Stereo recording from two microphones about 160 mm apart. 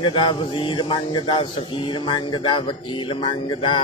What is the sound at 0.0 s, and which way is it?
Speech, 30° left (ahead or behind).